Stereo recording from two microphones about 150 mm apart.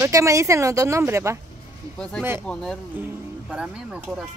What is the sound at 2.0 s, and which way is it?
Speech, 5° left (ahead or behind).